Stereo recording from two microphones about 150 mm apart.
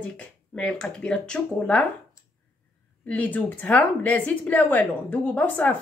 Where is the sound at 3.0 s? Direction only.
10° left (ahead or behind).